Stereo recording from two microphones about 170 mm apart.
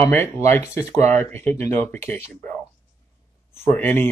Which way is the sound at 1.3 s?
15° left (ahead or behind).